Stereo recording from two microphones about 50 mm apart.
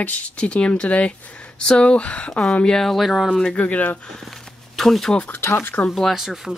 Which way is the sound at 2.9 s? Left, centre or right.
Centre.